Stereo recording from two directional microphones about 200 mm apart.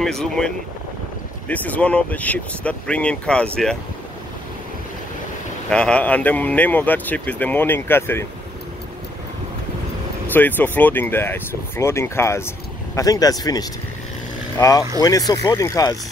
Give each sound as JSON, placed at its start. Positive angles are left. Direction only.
{"t": 0.0, "sound": "speech", "side_deg": 5}
{"t": 1.5, "sound": "speech", "side_deg": 10}
{"t": 5.7, "sound": "speech", "side_deg": 5}
{"t": 10.3, "sound": "speech", "side_deg": 10}